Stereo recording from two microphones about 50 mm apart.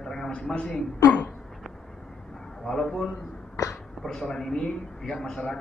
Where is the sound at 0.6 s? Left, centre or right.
Left.